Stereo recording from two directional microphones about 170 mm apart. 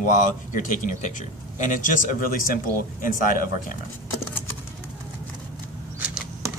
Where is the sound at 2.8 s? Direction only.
55° left (ahead or behind).